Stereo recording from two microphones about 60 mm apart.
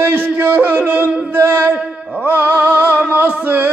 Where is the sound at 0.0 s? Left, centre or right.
Right.